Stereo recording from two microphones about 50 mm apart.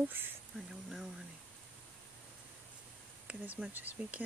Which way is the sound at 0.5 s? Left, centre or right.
Centre.